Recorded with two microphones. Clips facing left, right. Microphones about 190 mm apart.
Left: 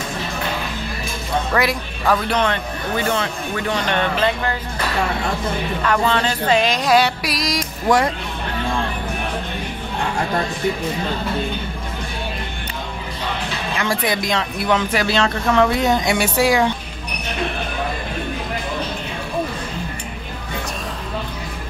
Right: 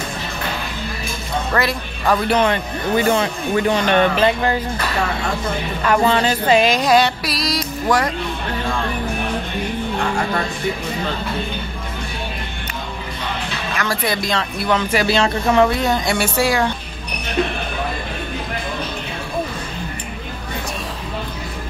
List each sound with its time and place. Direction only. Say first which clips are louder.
1.5 s speech: right 1 dB; 10° left (ahead or behind)
2.2 s speech: right 3 dB; 10° right (ahead or behind)
5.9 s speech: right 4 dB; 10° right (ahead or behind)
7.2 s speech: right 1 dB; 15° left (ahead or behind)
13.7 s speech: left 1 dB; 20° left (ahead or behind)
14.9 s speech: right 2 dB; 10° right (ahead or behind)
15.8 s speech: left 1 dB; 15° left (ahead or behind)